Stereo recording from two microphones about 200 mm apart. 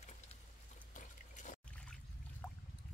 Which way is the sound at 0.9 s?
40° left (ahead or behind).